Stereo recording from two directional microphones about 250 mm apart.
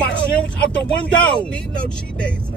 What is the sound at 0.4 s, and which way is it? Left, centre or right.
Speech, centre.